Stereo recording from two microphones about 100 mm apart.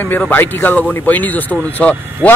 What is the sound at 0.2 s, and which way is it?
A man's voice, 20° left (ahead or behind).